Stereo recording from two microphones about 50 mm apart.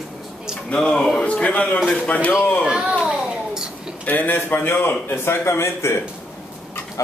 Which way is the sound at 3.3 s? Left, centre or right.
Centre.